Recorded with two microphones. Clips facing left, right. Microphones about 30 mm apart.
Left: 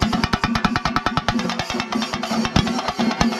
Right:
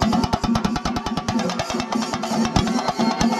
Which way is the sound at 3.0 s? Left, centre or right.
Centre.